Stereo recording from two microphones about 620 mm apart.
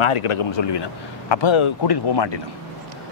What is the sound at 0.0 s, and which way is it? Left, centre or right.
Speech, left.